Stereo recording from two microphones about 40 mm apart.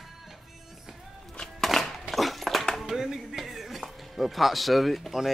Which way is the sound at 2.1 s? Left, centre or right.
Centre.